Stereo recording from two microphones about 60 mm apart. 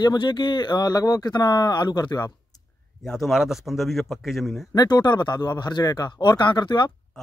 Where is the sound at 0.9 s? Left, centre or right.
Left.